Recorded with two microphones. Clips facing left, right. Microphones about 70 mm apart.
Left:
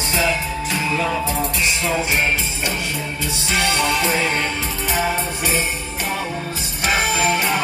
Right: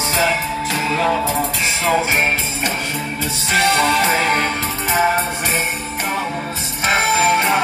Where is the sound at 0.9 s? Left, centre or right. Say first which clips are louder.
Right 5 dB; right.